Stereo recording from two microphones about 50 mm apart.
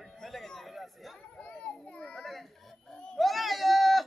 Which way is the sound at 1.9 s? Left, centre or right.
Centre.